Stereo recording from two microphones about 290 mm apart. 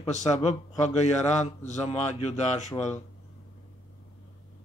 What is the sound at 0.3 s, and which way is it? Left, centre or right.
Speech, left.